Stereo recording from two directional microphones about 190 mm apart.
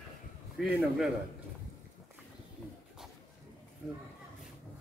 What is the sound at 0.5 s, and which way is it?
Speech, centre (ahead or behind).